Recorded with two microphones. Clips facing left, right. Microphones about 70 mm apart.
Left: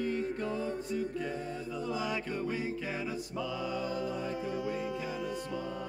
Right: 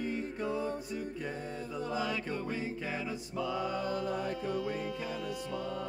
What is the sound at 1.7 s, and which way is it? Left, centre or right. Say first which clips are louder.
Music: right 1 dB; right.